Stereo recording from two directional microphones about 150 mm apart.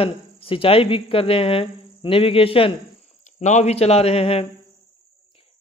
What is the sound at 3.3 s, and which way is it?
A man's voice, 50° left (ahead or behind).